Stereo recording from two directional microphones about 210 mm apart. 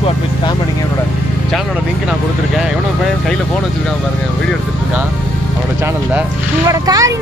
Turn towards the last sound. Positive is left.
turn(degrees=-15)  # may be behind; listen again after turning